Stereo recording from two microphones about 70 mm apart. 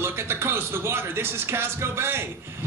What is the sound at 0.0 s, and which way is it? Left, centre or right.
Speech, right.